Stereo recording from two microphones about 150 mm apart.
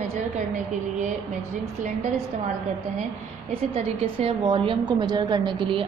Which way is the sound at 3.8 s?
40° right (ahead or behind).